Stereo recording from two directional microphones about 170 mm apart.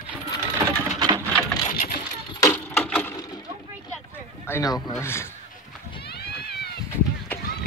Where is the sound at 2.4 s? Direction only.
10° left (ahead or behind).